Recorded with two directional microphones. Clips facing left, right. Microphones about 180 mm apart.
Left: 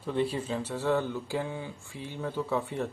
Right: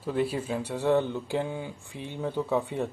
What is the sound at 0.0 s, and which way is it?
Speech, 5° right (ahead or behind).